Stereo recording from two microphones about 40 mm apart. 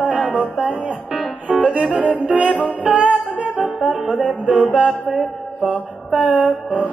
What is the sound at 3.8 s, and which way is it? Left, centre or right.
Music, centre.